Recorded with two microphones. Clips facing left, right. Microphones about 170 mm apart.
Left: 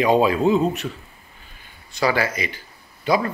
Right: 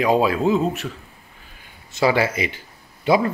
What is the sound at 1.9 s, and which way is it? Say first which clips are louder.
Speech: right 2 dB; 25° right (ahead or behind).